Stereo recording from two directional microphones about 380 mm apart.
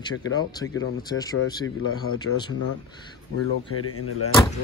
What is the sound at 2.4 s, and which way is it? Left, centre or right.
Speech, centre.